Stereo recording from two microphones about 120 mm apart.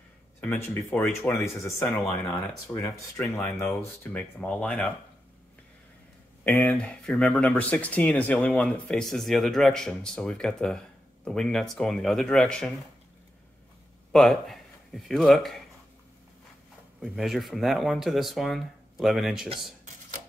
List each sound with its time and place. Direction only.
0.4 s speech: 15° left (ahead or behind)
2.3 s speech: 30° left (ahead or behind); by 4.9 s 5° left (ahead or behind)
6.4 s speech: 10° left (ahead or behind)
14.1 s speech: centre (ahead or behind)
17.0 s speech: centre (ahead or behind)